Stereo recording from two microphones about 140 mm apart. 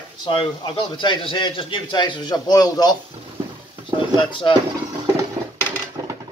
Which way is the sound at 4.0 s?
35° left (ahead or behind).